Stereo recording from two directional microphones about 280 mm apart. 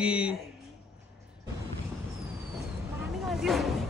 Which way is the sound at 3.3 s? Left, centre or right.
Centre.